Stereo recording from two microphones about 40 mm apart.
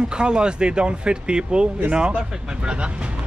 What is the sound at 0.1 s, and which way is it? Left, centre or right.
Speech, right.